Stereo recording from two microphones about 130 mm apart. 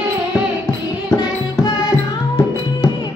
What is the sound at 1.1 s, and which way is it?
Music, 30° left (ahead or behind).